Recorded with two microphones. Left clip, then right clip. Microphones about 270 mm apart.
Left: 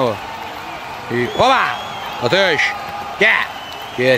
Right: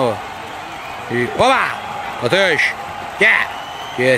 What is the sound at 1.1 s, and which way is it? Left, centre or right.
A man's voice, centre.